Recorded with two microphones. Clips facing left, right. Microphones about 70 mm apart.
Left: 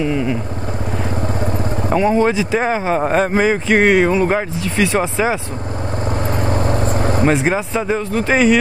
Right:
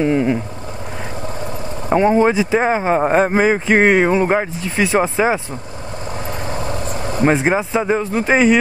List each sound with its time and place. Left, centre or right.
0.0 s vehicle: right
2.1 s speech: centre
6.5 s vehicle: left
7.2 s speech: centre